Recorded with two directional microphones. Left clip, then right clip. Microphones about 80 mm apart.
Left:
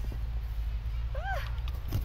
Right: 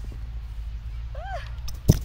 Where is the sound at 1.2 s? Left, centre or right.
Left.